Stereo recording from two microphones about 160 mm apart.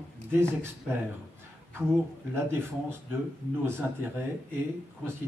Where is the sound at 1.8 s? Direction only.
15° right (ahead or behind).